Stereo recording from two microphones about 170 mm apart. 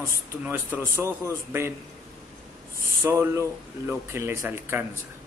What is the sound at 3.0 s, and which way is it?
Speech, 15° right (ahead or behind).